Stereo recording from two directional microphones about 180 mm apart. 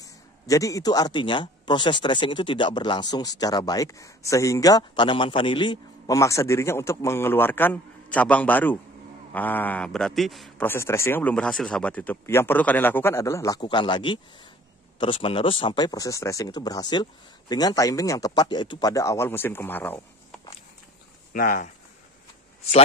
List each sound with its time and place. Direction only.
0.0 s a man's voice: 20° left (ahead or behind); by 10.5 s centre (ahead or behind)
10.6 s speech: 15° left (ahead or behind)
21.3 s speech: 50° left (ahead or behind)